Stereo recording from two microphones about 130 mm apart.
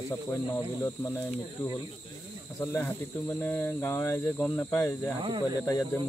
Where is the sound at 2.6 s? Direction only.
20° left (ahead or behind).